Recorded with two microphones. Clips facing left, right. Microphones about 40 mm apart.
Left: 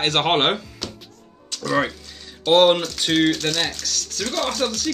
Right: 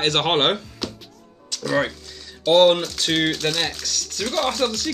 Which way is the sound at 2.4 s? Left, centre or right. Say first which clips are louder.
Even; centre.